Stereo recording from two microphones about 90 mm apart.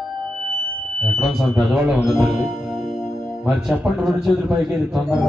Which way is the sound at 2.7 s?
Centre (ahead or behind).